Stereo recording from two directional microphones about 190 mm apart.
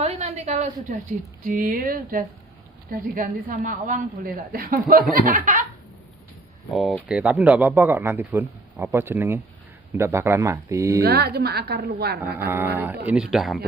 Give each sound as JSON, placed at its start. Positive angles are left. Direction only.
{"t": 0.0, "sound": "a sound", "side_deg": -35}
{"t": 1.4, "sound": "a woman's voice", "side_deg": -45}
{"t": 6.7, "sound": "speech", "side_deg": -5}
{"t": 11.0, "sound": "a woman's voice", "side_deg": -55}
{"t": 12.2, "sound": "speech", "side_deg": -10}